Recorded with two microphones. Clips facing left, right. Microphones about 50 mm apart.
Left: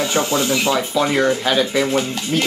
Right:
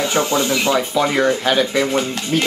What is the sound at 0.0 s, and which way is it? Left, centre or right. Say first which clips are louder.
Speech: right 1 dB; centre.